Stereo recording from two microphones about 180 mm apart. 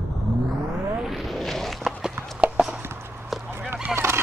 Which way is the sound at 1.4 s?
Centre (ahead or behind).